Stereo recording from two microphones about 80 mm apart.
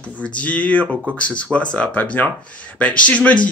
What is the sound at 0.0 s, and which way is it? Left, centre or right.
Speech, centre.